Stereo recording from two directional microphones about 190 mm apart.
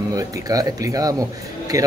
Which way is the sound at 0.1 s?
20° right (ahead or behind).